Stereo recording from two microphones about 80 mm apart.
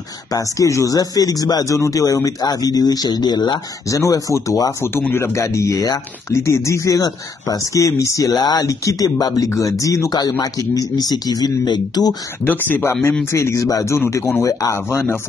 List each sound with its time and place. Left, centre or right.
0.3 s speech: left
3.9 s speech: left
10.7 s speech: left
12.4 s speech: left